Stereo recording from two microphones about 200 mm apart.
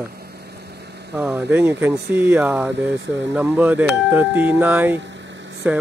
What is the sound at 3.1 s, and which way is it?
Speech, 65° right (ahead or behind).